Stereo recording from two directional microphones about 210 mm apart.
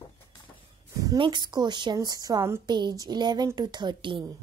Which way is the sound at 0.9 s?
20° right (ahead or behind).